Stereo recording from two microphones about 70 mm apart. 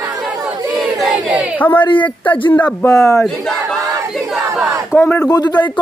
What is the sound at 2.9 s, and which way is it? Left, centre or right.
Speech, left.